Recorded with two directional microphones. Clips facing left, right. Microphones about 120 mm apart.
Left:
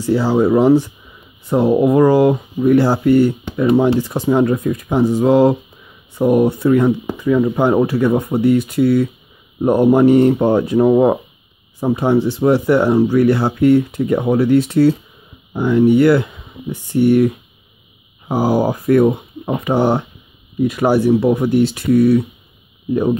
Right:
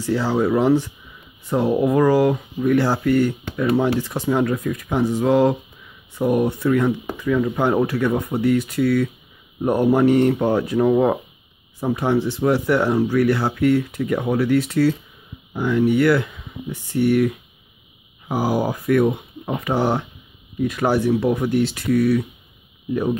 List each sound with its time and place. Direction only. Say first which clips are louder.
0.0 s speech: left 5 dB; 15° left (ahead or behind)
18.3 s speech: left 5 dB; 30° left (ahead or behind)